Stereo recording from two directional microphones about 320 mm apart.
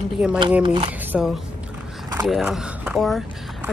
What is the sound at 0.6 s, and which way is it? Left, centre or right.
Speech, centre.